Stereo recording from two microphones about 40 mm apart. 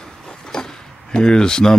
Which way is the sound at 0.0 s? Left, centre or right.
Centre.